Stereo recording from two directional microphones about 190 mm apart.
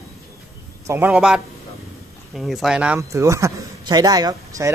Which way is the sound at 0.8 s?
15° right (ahead or behind).